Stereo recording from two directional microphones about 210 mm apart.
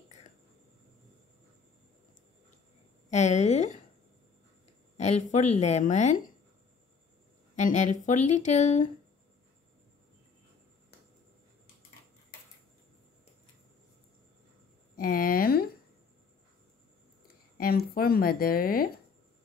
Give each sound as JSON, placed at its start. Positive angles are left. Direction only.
{"t": 3.1, "sound": "a woman's voice", "side_deg": 35}
{"t": 4.9, "sound": "a woman's voice", "side_deg": 30}
{"t": 7.5, "sound": "a woman's voice", "side_deg": 35}
{"t": 15.0, "sound": "speech", "side_deg": 40}
{"t": 17.6, "sound": "speech", "side_deg": 45}